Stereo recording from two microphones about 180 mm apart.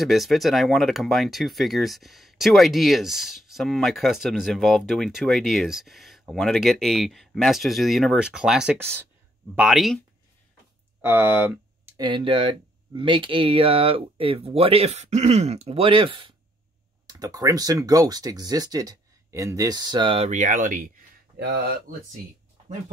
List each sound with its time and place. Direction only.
0.0 s speech: centre (ahead or behind)
9.6 s speech: centre (ahead or behind)
11.0 s speech: 10° right (ahead or behind)
12.0 s speech: 25° right (ahead or behind)
20.2 s speech: 45° right (ahead or behind)